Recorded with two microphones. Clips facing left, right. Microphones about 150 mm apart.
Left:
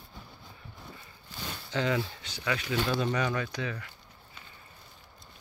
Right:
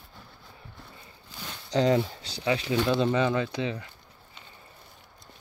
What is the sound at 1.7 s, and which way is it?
Speech, 35° right (ahead or behind).